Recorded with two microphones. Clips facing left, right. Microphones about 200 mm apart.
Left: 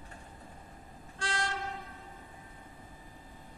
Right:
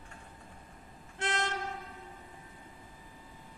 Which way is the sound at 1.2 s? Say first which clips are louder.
Right 2 dB; 20° right (ahead or behind).